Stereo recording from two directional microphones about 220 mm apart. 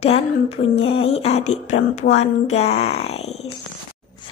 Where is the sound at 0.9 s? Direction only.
25° left (ahead or behind).